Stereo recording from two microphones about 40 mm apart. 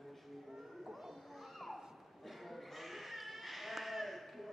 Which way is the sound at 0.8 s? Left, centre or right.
Centre.